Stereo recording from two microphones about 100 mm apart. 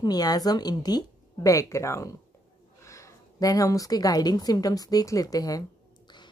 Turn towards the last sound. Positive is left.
turn(degrees=40)  # may be behind; listen again after turning